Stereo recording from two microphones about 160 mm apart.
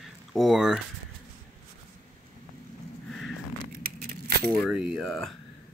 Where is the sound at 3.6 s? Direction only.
70° right (ahead or behind).